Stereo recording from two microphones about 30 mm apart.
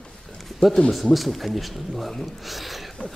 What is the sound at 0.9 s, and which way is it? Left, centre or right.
A man's voice, centre.